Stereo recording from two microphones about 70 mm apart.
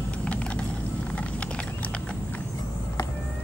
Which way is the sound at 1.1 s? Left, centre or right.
Centre.